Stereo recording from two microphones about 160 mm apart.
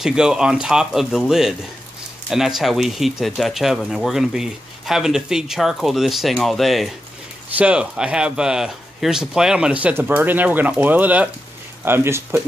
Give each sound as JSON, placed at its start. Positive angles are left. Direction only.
{"t": 0.0, "sound": "speech", "side_deg": -5}